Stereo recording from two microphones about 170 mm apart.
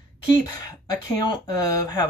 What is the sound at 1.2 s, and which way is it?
Speech, 25° left (ahead or behind).